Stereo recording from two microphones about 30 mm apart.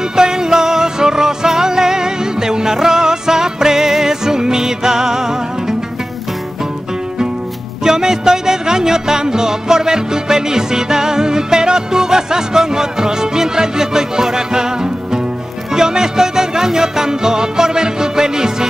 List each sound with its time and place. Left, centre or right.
0.1 s music: right
7.8 s music: centre